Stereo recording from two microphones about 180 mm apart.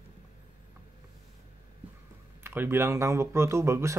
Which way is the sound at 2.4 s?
15° right (ahead or behind).